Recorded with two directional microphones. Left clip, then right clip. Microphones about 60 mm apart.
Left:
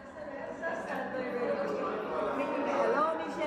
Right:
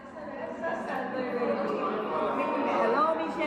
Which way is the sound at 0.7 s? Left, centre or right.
Left.